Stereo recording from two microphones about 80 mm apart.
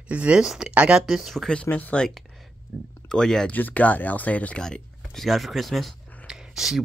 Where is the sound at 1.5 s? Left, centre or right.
Centre.